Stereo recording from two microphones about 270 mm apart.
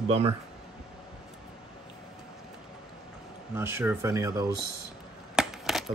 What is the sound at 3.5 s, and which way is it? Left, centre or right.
Speech, centre.